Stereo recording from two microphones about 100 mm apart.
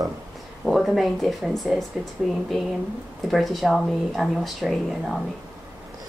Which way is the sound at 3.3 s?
Centre (ahead or behind).